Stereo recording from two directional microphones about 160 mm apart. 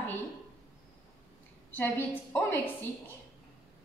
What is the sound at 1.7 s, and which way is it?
Speech, 10° left (ahead or behind).